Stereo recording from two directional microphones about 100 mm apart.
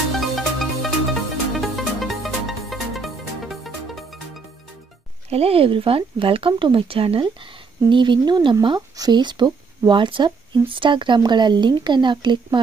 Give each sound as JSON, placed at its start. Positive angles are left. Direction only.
{"t": 0.1, "sound": "music", "side_deg": 0}
{"t": 5.3, "sound": "speech", "side_deg": -80}